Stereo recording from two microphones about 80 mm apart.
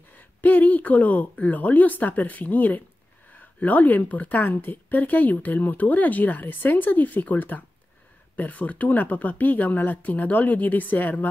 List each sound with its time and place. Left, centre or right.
0.4 s a woman's voice: left